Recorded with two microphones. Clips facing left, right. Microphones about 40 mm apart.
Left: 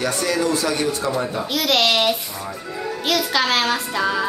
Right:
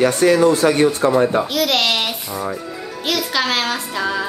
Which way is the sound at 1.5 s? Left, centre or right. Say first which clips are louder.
Right 1 dB; centre.